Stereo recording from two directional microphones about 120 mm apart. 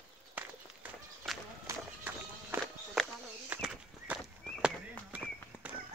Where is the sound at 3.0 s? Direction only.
5° left (ahead or behind).